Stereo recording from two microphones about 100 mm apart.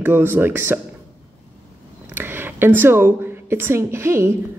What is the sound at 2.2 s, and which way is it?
A woman's voice, 20° right (ahead or behind).